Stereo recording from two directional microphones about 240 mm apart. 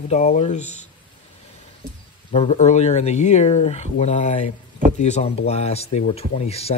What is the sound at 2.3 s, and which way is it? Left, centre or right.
Speech, left.